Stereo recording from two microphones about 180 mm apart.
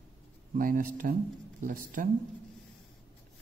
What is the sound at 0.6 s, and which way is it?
Speech, 50° right (ahead or behind).